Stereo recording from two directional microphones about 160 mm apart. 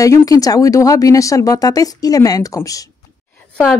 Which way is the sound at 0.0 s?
20° left (ahead or behind).